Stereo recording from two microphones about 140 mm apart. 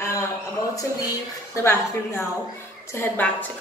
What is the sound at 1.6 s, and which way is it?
A woman's voice, 20° left (ahead or behind).